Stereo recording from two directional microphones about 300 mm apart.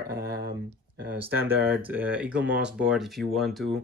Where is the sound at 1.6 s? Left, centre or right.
Centre.